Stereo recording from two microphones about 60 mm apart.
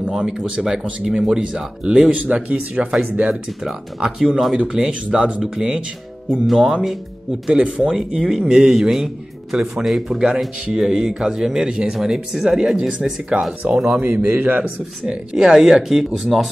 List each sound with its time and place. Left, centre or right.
0.0 s speech: centre
3.6 s speech: centre
4.6 s speech: centre
7.4 s speech: centre
13.4 s speech: right
14.1 s speech: right
15.0 s speech: centre